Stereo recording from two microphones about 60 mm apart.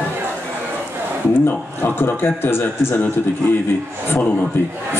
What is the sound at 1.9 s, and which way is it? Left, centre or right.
A man's voice, left.